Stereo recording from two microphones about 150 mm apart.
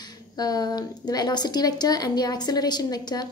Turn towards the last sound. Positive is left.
turn(degrees=25)  # may be behind; listen again after turning